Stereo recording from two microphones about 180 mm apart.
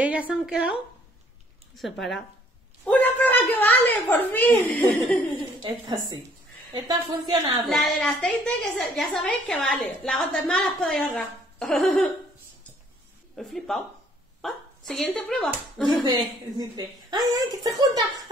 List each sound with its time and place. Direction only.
0.0 s a woman's voice: 5° right (ahead or behind)
1.8 s a woman's voice: centre (ahead or behind)
5.6 s a woman's voice: 25° right (ahead or behind)
7.7 s a woman's voice: centre (ahead or behind)
13.4 s a woman's voice: centre (ahead or behind)
16.0 s a woman's voice: 25° right (ahead or behind)